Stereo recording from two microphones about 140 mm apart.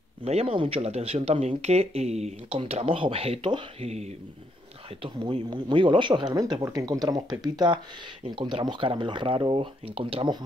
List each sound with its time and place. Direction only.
0.2 s speech: 45° right (ahead or behind)
3.8 s speech: 50° right (ahead or behind)
5.0 s speech: 35° right (ahead or behind)